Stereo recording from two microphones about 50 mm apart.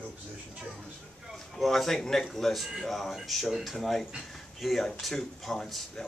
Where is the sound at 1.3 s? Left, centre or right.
Centre.